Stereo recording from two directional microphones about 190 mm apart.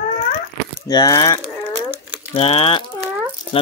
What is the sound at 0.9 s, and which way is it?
Speech, 20° left (ahead or behind).